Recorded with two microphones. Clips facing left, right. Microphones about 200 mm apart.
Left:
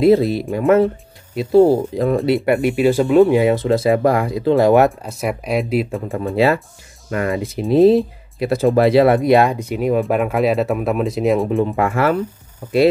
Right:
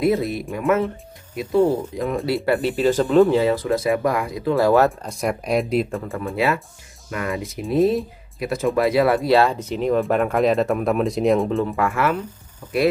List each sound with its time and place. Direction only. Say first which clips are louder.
0.0 s speech: left 7 dB; 30° left (ahead or behind)
2.3 s speech: left 4 dB; 15° left (ahead or behind)
5.0 s speech: left 1 dB; 5° left (ahead or behind)
6.3 s speech: left 6 dB; 30° left (ahead or behind); by 11.4 s centre (ahead or behind)
11.4 s speech: left 4 dB; 15° left (ahead or behind)